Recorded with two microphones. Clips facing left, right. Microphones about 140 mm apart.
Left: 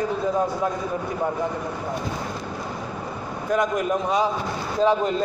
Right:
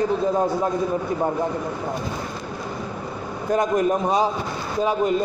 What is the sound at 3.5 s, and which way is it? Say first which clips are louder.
Speech: right 2 dB; 35° right (ahead or behind).